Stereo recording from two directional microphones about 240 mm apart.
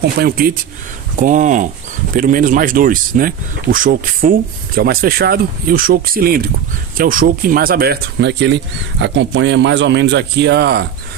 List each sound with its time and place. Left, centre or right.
0.0 s speech: right